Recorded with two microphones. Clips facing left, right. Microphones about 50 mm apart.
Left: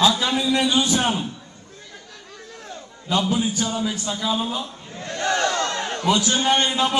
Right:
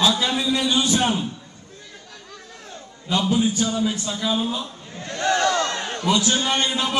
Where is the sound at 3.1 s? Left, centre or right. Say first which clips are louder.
Right 1 dB; left.